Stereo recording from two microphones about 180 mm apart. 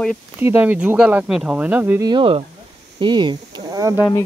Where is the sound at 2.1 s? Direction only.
30° right (ahead or behind).